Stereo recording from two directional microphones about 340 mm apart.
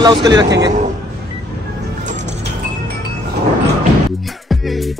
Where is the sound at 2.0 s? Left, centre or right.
Right.